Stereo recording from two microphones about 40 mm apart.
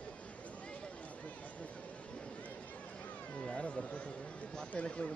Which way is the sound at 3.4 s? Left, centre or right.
Left.